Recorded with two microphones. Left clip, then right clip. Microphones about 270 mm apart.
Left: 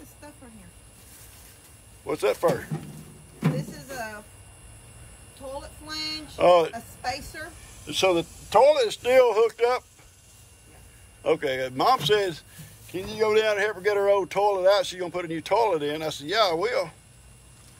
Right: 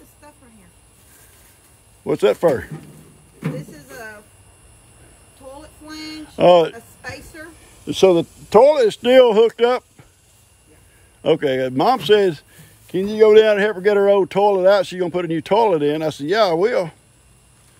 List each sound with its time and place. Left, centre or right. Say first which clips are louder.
2.0 s speech: right 8 dB; right
3.4 s speech: even; centre
6.3 s speech: right 6 dB; right
6.7 s a woman's voice: left 2 dB; centre
7.9 s speech: right 8 dB; right
11.2 s a man's voice: right 7 dB; right